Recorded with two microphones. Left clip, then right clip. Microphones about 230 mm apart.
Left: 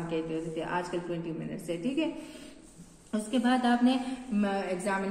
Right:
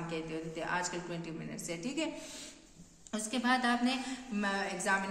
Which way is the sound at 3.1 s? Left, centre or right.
Right.